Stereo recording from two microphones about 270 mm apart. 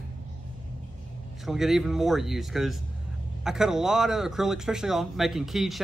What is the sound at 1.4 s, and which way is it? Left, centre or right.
Speech, centre.